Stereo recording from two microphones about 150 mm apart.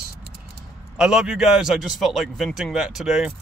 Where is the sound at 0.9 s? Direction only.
5° right (ahead or behind).